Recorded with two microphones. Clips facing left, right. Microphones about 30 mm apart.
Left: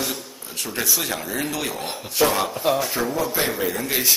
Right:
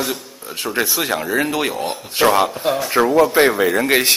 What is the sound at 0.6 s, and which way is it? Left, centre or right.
Speech, right.